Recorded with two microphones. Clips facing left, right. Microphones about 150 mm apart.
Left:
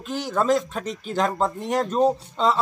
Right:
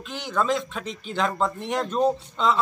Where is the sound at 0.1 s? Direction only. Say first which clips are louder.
Left 4 dB; 40° left (ahead or behind).